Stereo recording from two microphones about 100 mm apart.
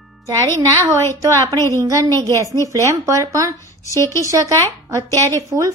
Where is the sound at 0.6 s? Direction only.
30° right (ahead or behind).